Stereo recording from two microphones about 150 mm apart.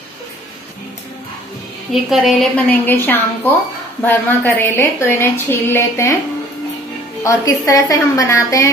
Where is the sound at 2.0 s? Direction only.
Centre (ahead or behind).